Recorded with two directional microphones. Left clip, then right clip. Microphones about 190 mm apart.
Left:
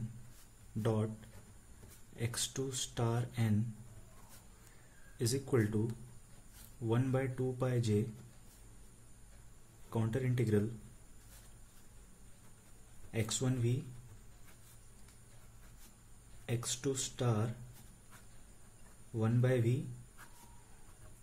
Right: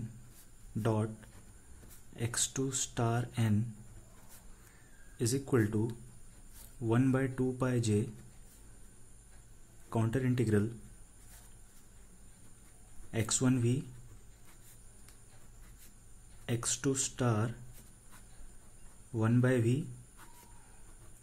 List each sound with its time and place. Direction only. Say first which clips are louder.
0.8 s speech: right 2 dB; 20° right (ahead or behind)
2.1 s speech: right 3 dB; 20° right (ahead or behind)
5.1 s speech: right 2 dB; 15° right (ahead or behind)
6.9 s speech: right 4 dB; 25° right (ahead or behind)
9.8 s speech: right 4 dB; 25° right (ahead or behind)
13.1 s speech: right 5 dB; 25° right (ahead or behind)
16.4 s speech: right 3 dB; 25° right (ahead or behind)
19.1 s speech: right 4 dB; 25° right (ahead or behind)